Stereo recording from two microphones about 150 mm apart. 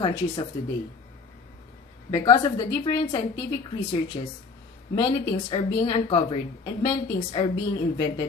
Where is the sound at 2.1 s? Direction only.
25° left (ahead or behind).